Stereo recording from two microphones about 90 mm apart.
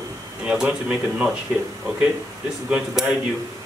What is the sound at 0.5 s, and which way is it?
Speech, 15° right (ahead or behind).